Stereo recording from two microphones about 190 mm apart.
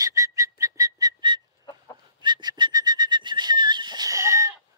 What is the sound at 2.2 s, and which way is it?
Bird, 25° right (ahead or behind).